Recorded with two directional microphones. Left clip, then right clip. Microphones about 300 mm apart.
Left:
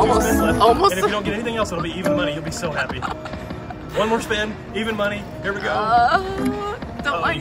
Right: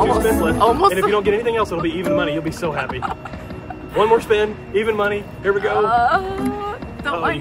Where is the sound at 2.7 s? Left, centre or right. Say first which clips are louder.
Right 1 dB; centre.